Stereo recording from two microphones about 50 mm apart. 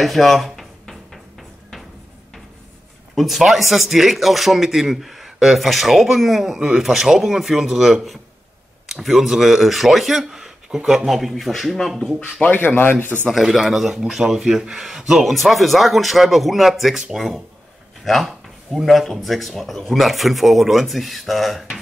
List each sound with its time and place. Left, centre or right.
0.0 s a sound: centre
3.2 s speech: centre
12.2 s speech: left
13.3 s speech: centre
18.0 s a sound: centre
18.9 s speech: centre